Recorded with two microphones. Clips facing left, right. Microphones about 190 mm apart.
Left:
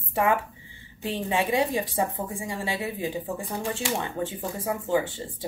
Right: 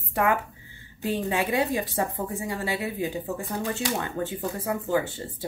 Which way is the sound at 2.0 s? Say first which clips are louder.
Even; 25° left (ahead or behind).